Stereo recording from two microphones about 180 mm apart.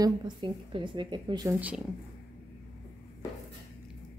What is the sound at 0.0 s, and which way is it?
Speech, 30° right (ahead or behind).